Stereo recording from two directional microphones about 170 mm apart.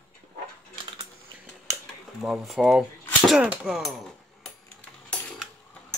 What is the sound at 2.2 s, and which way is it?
Cutlery, 5° right (ahead or behind).